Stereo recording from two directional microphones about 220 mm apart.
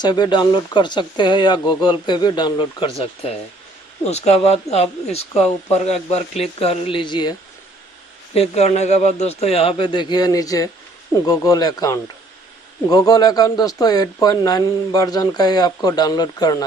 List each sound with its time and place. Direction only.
0.0 s speech: 20° left (ahead or behind)
8.4 s speech: 30° left (ahead or behind)